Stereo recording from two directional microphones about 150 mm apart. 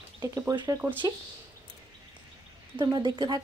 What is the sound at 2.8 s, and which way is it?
Speech, 30° right (ahead or behind).